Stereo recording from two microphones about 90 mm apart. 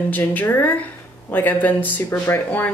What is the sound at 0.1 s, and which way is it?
Speech, 20° left (ahead or behind).